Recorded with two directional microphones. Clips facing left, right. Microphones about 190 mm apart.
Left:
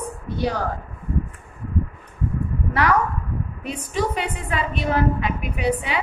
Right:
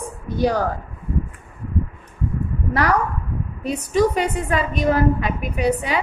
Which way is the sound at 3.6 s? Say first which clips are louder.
Right 7 dB; 40° right (ahead or behind).